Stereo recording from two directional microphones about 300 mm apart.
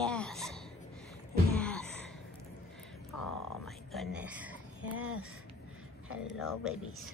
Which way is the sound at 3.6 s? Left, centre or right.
Centre.